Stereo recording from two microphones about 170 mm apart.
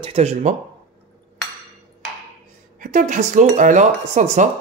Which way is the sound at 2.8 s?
50° right (ahead or behind).